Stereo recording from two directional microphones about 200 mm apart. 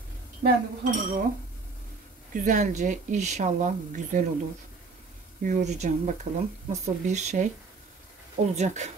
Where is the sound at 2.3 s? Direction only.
40° right (ahead or behind).